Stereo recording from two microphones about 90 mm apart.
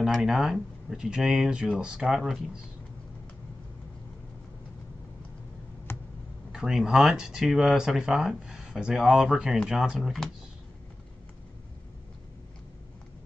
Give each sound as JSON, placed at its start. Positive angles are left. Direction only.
{"t": 0.0, "sound": "speech", "side_deg": 0}
{"t": 5.9, "sound": "a sound", "side_deg": 25}
{"t": 6.5, "sound": "speech", "side_deg": -5}